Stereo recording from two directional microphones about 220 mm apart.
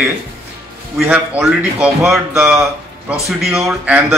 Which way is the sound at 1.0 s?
5° right (ahead or behind).